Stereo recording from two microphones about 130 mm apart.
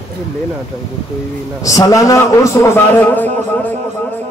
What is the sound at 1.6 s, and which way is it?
A man's voice, 25° left (ahead or behind).